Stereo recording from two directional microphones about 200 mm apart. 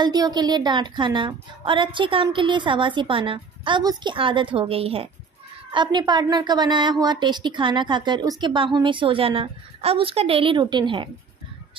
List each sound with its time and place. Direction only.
0.0 s a woman's voice: 20° right (ahead or behind)